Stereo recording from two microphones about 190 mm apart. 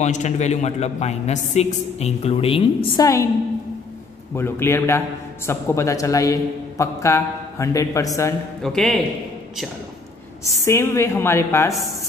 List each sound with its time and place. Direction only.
0.0 s a man's voice: 40° left (ahead or behind)
4.4 s a man's voice: 10° left (ahead or behind)
8.6 s a man's voice: centre (ahead or behind)
10.4 s a man's voice: 15° left (ahead or behind)